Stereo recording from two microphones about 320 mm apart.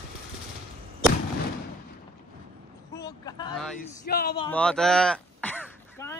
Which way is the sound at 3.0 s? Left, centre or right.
Centre.